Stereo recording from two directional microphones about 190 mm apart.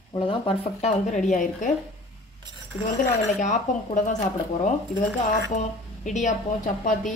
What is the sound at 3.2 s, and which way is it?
Speech, 40° left (ahead or behind).